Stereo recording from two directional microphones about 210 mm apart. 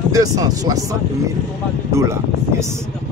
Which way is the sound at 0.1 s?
15° right (ahead or behind).